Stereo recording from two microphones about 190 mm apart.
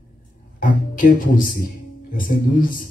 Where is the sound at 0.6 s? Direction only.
45° left (ahead or behind).